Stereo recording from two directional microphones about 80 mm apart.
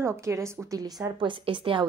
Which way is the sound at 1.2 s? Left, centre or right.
Right.